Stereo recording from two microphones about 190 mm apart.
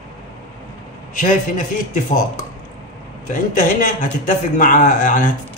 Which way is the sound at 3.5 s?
40° left (ahead or behind).